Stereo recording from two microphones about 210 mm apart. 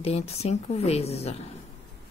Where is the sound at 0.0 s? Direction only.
30° left (ahead or behind).